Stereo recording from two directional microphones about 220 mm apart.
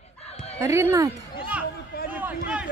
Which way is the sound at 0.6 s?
10° right (ahead or behind).